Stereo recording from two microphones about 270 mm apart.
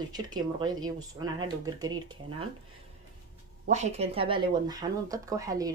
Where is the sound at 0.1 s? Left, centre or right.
Centre.